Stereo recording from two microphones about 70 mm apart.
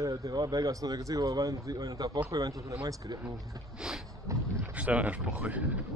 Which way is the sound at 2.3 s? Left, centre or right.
Right.